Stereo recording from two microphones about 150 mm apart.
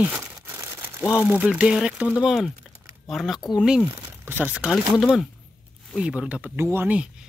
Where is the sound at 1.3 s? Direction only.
5° right (ahead or behind).